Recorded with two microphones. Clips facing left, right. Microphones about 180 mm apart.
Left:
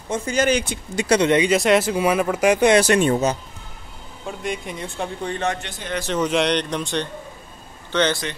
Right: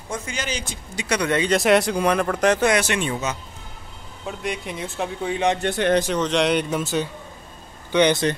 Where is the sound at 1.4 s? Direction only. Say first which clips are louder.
Left 1 dB; centre (ahead or behind).